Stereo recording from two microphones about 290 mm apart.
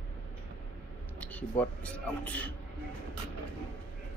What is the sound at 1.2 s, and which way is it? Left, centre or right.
A man's voice, centre.